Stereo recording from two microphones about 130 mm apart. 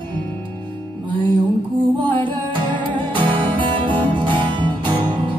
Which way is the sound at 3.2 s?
40° right (ahead or behind).